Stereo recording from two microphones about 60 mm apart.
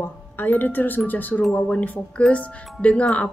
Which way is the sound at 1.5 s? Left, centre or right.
Centre.